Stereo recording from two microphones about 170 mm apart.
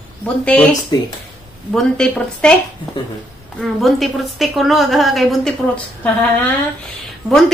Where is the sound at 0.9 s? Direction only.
20° left (ahead or behind).